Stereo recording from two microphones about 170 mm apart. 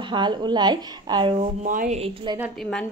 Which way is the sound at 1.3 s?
50° right (ahead or behind).